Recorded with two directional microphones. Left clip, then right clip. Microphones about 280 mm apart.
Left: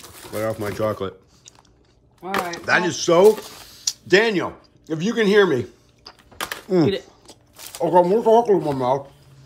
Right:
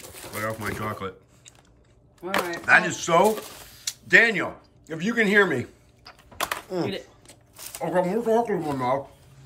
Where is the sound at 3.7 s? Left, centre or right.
Centre.